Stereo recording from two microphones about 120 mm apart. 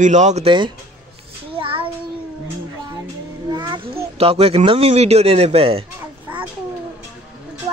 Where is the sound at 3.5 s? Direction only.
40° right (ahead or behind).